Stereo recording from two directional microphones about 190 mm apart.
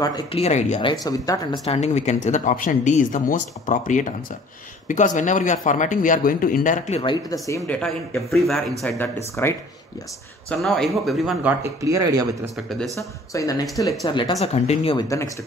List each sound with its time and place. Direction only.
0.0 s a woman's voice: 20° left (ahead or behind)
0.4 s a woman's voice: 35° left (ahead or behind); by 1.6 s 20° left (ahead or behind)
1.7 s speech: 35° left (ahead or behind)
7.0 s a woman's voice: 25° left (ahead or behind)
8.4 s speech: centre (ahead or behind)
8.8 s speech: 10° left (ahead or behind)
11.6 s speech: 15° right (ahead or behind)
12.6 s speech: centre (ahead or behind)
12.9 s a woman's voice: 15° left (ahead or behind); by 15.0 s 35° left (ahead or behind)
15.0 s speech: 15° left (ahead or behind)